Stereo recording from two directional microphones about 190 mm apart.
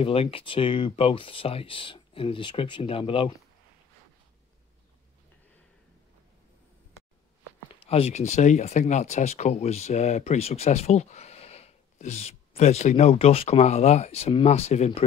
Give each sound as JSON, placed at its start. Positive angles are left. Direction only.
{"t": 0.0, "sound": "speech", "side_deg": 30}
{"t": 7.8, "sound": "speech", "side_deg": 35}